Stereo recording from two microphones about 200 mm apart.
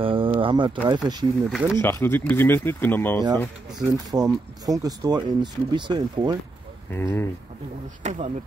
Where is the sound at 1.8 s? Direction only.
10° left (ahead or behind).